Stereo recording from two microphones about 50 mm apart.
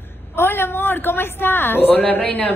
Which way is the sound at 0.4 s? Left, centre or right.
Left.